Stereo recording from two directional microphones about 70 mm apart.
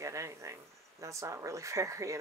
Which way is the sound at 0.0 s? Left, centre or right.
Right.